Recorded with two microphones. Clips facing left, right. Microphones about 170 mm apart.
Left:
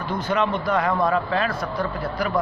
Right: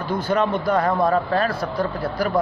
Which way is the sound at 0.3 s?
35° right (ahead or behind).